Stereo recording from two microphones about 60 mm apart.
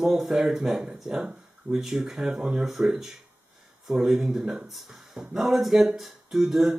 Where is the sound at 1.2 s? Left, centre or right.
Right.